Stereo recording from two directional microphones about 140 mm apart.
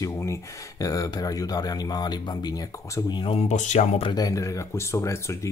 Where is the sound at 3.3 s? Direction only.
55° left (ahead or behind).